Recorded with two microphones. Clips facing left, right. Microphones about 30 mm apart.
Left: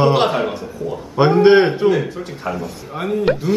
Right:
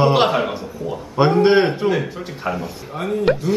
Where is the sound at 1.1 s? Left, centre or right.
Centre.